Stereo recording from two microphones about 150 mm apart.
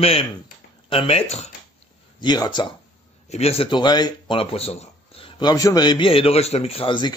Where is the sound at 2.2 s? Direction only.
30° left (ahead or behind).